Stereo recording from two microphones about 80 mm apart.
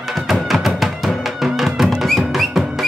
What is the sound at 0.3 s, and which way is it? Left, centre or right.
Music, centre.